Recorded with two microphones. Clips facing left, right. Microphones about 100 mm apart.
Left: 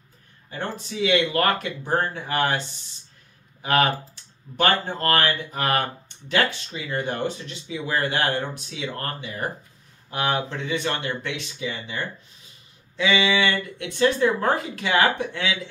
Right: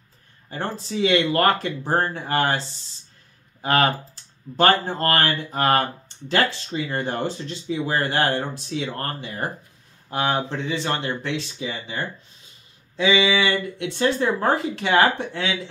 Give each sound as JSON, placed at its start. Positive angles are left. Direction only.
{"t": 0.5, "sound": "speech", "side_deg": -35}
{"t": 3.6, "sound": "speech", "side_deg": -35}